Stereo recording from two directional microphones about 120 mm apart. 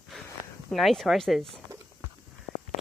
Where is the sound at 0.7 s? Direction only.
Centre (ahead or behind).